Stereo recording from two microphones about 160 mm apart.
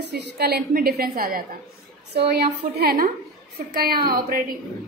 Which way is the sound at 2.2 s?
80° right.